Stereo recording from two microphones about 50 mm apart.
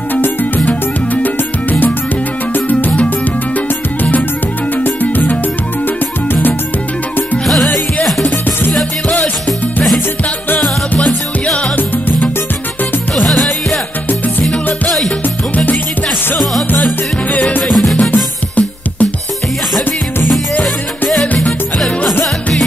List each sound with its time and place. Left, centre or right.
0.1 s music: left
7.4 s music: centre
13.1 s music: centre
16.8 s music: left
21.7 s music: centre